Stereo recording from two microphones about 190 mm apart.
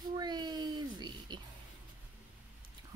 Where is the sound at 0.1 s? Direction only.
20° right (ahead or behind).